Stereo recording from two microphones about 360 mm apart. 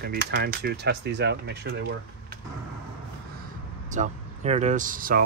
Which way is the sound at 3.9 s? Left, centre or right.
Centre.